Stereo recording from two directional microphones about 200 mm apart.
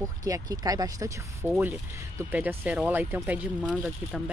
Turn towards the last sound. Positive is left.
turn(degrees=-5)  # may be behind; listen again after turning